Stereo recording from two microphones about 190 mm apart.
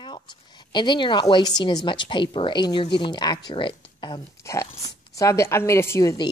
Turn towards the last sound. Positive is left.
turn(degrees=15)  # may be behind; listen again after turning